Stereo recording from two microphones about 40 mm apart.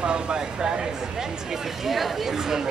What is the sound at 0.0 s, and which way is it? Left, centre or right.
Speech, right.